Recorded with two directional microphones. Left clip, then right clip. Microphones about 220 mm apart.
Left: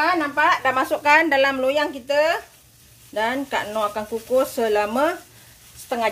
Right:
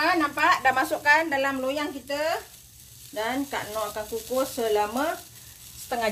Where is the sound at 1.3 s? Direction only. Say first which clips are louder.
Left 8 dB; 50° left (ahead or behind).